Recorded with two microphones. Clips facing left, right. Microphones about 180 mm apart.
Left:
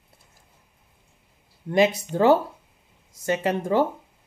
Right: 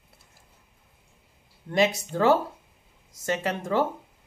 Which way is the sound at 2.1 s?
20° left (ahead or behind).